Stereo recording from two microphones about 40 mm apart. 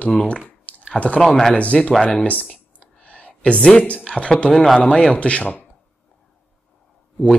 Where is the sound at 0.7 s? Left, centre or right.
Left.